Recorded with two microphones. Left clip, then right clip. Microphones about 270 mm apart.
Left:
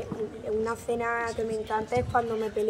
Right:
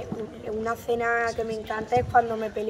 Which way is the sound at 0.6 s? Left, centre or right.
Centre.